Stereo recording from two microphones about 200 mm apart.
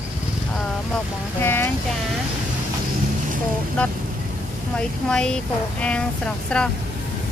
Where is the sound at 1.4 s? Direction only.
10° left (ahead or behind).